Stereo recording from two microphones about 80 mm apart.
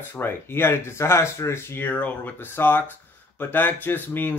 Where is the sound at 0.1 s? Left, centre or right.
Left.